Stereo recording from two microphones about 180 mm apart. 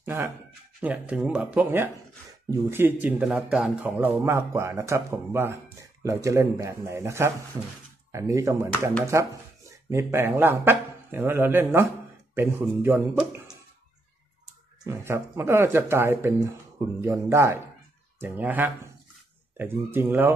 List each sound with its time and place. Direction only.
0.0 s a man's voice: 15° right (ahead or behind)
14.9 s a man's voice: 15° right (ahead or behind)